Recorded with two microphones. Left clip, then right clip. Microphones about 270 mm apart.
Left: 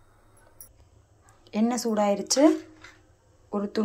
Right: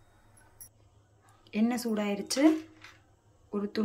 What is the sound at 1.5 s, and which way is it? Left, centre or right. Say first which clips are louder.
Speech: left 5 dB; centre.